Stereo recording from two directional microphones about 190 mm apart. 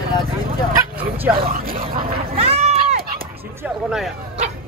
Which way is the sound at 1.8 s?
30° right (ahead or behind).